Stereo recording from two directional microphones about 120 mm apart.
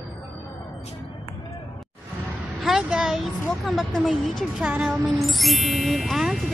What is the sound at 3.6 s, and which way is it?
Speech, centre (ahead or behind).